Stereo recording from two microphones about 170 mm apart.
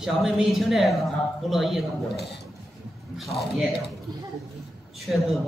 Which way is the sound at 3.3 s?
Centre (ahead or behind).